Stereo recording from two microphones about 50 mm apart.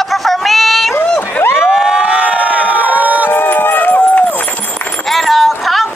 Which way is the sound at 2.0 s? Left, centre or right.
Right.